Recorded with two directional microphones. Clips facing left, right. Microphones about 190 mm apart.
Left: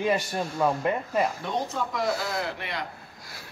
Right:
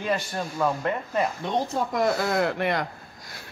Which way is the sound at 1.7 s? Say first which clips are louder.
Right 4 dB; 50° right (ahead or behind).